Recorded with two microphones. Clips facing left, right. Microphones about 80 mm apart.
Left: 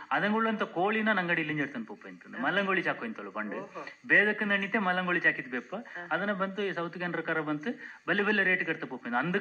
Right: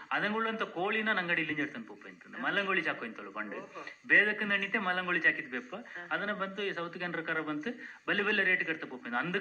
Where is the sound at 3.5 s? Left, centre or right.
Centre.